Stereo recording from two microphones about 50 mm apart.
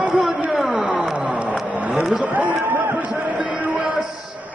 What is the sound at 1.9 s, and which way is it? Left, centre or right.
Speech, centre.